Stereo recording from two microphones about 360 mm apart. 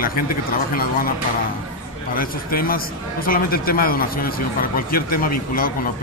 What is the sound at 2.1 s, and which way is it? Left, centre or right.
A man's voice, left.